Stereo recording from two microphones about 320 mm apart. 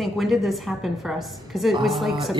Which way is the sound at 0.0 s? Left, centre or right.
Centre.